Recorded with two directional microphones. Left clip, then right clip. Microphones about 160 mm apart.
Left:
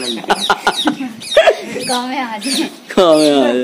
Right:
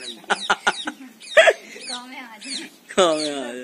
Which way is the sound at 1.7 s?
55° left (ahead or behind).